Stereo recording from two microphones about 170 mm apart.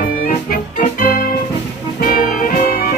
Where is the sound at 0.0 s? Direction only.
55° left (ahead or behind).